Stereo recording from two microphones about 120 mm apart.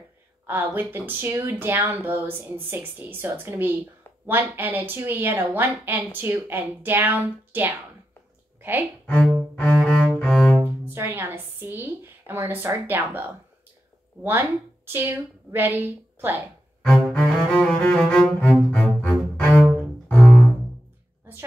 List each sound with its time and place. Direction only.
0.5 s a woman's voice: 15° right (ahead or behind)
9.0 s cello: 10° left (ahead or behind)
10.6 s a woman's voice: 20° right (ahead or behind)
16.8 s cello: 10° left (ahead or behind)